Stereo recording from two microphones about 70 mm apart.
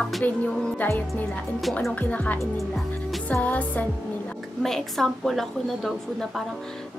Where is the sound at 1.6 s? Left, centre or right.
Centre.